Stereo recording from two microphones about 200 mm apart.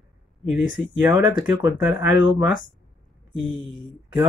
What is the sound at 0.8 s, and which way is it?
Speech, 10° right (ahead or behind).